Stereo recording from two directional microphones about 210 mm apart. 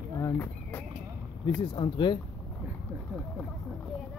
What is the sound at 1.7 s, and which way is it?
Speech, 25° left (ahead or behind).